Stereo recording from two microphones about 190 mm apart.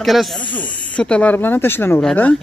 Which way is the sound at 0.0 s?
Centre (ahead or behind).